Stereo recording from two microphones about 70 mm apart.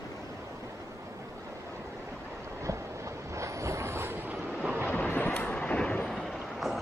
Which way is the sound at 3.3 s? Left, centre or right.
Right.